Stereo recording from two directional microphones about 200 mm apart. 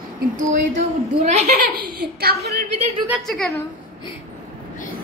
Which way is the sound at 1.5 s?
50° right (ahead or behind).